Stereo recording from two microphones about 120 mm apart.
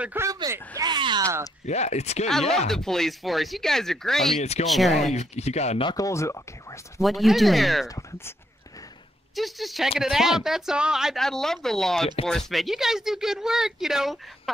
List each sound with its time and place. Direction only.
0.0 s speech: 20° right (ahead or behind)
0.3 s a sound: 30° right (ahead or behind)
1.7 s speech: 65° left (ahead or behind)
2.7 s speech: 5° left (ahead or behind)
4.4 s speech: 70° left (ahead or behind)
4.6 s speech: centre (ahead or behind)
5.1 s speech: 65° left (ahead or behind)
5.9 s speech: 30° left (ahead or behind)
7.0 s speech: centre (ahead or behind)
9.3 s speech: centre (ahead or behind)